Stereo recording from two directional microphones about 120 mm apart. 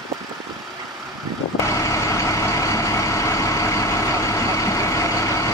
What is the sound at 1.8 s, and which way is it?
Vehicle, 25° left (ahead or behind).